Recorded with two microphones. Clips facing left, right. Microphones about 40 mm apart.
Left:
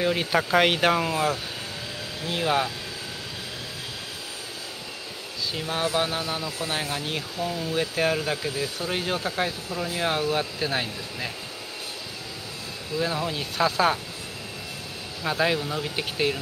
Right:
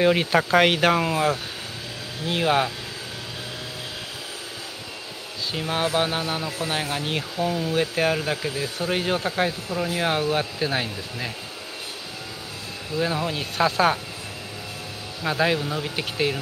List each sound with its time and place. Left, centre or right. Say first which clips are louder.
0.0 s speech: right 5 dB; right
0.3 s speech: right 2 dB; centre
2.4 s speech: right 3 dB; centre
5.5 s speech: right 3 dB; centre
12.9 s speech: right 2 dB; centre
15.2 s speech: right 2 dB; centre